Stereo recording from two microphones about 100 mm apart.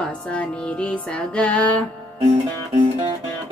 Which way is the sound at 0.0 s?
10° left (ahead or behind).